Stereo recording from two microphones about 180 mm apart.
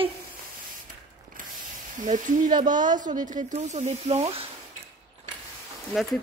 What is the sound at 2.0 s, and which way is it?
Speech, 45° right (ahead or behind).